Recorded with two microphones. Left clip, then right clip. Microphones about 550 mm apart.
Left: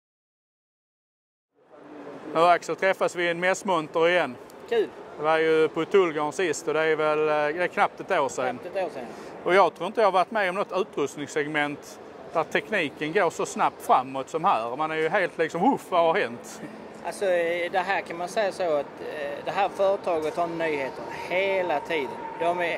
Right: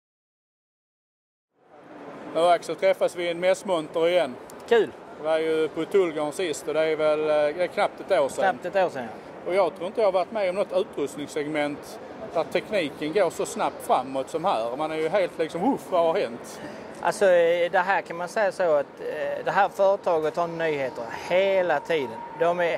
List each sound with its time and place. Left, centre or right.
2.3 s speech: left
8.5 s speech: right
9.5 s speech: left
17.0 s speech: right